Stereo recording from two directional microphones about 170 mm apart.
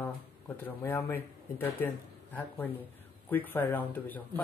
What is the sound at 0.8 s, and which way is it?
Speech, 10° left (ahead or behind).